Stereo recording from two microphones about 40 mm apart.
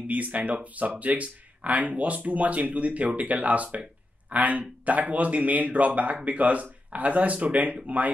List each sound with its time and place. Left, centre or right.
0.0 s speech: right